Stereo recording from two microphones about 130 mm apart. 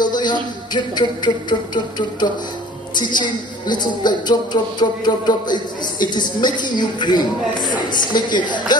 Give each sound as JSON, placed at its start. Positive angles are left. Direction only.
{"t": 0.0, "sound": "a man's voice", "side_deg": 35}